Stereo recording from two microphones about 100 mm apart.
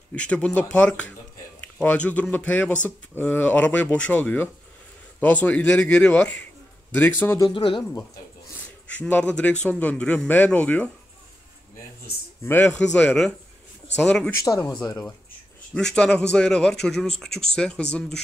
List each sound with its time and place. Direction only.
0.1 s speech: 10° left (ahead or behind)
7.5 s speech: 60° left (ahead or behind)
9.1 s speech: 15° left (ahead or behind)
12.6 s speech: 10° left (ahead or behind)
14.3 s speech: 35° left (ahead or behind)
15.7 s speech: 10° left (ahead or behind)